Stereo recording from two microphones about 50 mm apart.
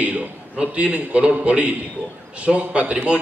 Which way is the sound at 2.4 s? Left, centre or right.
Right.